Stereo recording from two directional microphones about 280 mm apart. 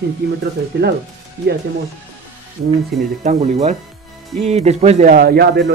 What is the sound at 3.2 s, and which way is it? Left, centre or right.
Speech, right.